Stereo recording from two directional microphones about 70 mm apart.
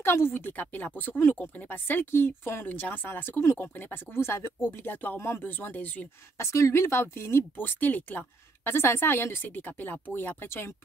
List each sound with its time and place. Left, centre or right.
0.0 s speech: left
6.3 s speech: left